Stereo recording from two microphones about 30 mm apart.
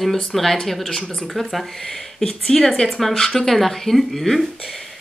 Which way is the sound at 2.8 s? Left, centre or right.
Centre.